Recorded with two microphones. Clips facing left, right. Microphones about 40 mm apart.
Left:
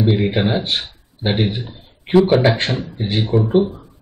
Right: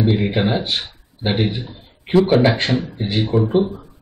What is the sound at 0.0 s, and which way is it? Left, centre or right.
Speech, centre.